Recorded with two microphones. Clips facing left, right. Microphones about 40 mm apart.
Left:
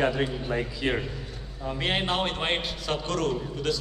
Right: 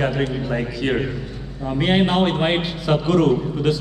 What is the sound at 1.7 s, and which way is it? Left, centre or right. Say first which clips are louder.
A man's voice: right 9 dB; centre.